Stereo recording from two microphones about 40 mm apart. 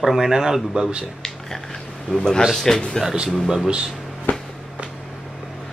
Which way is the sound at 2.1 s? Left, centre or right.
Left.